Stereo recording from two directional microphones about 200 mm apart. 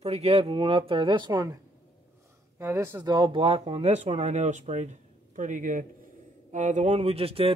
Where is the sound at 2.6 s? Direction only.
15° right (ahead or behind).